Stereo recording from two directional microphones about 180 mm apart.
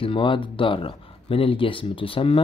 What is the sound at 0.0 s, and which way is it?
Speech, 30° left (ahead or behind).